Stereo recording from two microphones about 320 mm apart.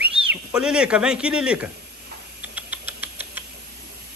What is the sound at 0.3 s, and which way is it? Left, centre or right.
Speech, centre.